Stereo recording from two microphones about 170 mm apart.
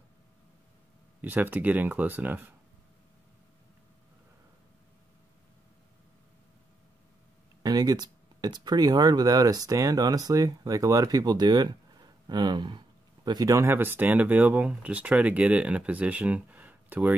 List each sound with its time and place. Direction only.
1.2 s speech: 10° right (ahead or behind)
7.6 s speech: 20° right (ahead or behind)